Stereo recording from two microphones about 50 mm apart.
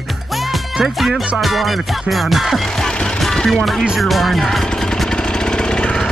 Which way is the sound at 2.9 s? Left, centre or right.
Centre.